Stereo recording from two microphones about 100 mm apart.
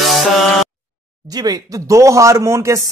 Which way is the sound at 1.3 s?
40° right (ahead or behind).